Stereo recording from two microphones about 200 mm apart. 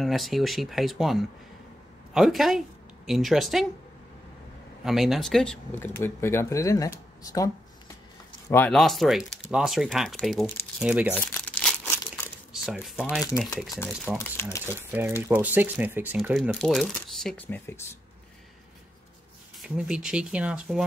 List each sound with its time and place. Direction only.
0.0 s speech: centre (ahead or behind)
4.8 s speech: centre (ahead or behind)
11.1 s crumpling: 5° left (ahead or behind)
13.3 s speech: 15° left (ahead or behind)
14.1 s speech: 5° right (ahead or behind)
16.5 s speech: centre (ahead or behind)
19.6 s speech: 5° right (ahead or behind)